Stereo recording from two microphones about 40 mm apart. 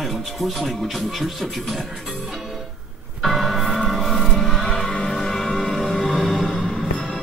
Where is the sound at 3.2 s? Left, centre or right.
Centre.